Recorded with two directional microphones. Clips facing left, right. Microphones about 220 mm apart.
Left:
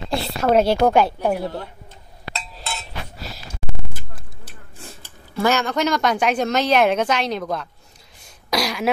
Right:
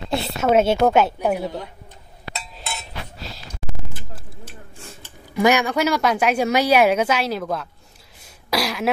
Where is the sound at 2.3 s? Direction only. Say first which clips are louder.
Left 1 dB; 15° right (ahead or behind).